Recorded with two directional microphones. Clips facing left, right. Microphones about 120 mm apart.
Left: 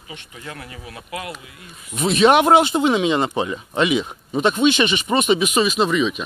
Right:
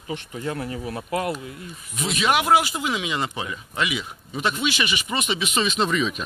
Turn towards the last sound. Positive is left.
turn(degrees=5)  # may be behind; listen again after turning